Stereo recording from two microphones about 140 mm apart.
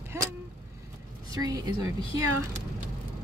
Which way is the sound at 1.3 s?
25° right (ahead or behind).